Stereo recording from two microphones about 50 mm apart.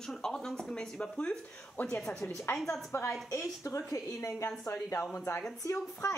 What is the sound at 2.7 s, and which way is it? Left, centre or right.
Speech, left.